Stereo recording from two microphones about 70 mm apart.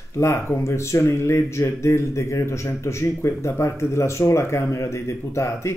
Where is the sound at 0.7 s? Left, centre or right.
Left.